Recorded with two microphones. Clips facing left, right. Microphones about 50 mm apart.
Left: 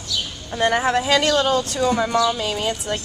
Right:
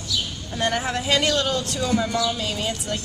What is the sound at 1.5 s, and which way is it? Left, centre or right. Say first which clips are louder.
Speech: left 4 dB; left.